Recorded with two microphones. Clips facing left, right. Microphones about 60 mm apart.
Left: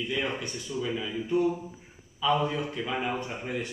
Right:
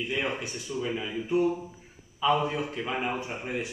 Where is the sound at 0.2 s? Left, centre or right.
Centre.